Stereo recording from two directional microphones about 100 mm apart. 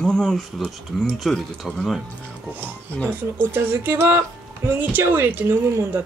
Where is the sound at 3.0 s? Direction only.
20° right (ahead or behind).